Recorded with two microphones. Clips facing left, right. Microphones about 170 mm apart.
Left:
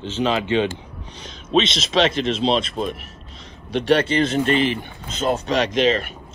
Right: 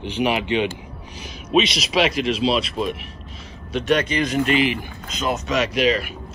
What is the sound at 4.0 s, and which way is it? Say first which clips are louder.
Speech: left 2 dB; 30° left (ahead or behind).